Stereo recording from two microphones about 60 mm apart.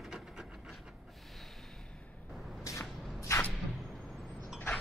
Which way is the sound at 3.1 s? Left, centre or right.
Left.